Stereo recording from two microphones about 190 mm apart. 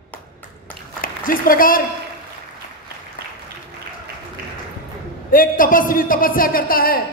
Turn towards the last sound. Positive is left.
turn(degrees=50)  # may be behind; listen again after turning